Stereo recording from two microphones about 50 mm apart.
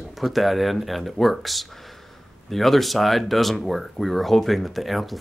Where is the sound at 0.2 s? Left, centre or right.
Centre.